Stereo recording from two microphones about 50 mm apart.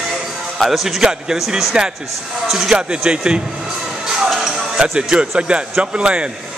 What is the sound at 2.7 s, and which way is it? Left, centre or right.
Speech, centre.